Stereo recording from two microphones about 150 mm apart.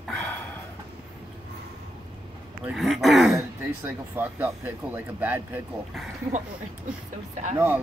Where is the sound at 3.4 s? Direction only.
15° right (ahead or behind).